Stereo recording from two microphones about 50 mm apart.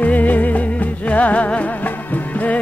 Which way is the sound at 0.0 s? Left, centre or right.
Left.